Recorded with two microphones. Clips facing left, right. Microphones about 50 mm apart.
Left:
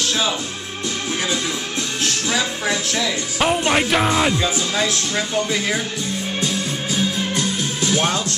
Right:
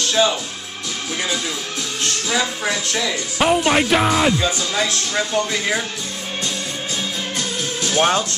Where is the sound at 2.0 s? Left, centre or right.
Centre.